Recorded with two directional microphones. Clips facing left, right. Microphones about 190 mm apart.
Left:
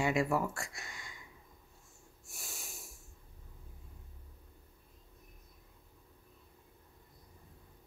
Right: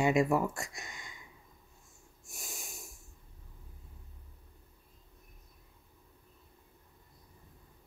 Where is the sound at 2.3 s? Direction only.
15° right (ahead or behind).